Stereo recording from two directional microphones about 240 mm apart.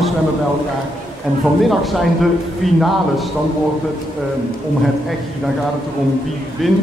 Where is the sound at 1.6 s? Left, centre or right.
Centre.